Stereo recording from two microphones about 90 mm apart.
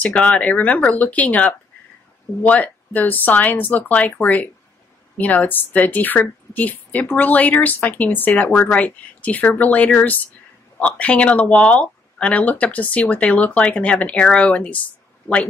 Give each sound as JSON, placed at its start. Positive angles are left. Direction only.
{"t": 0.0, "sound": "a woman's voice", "side_deg": 15}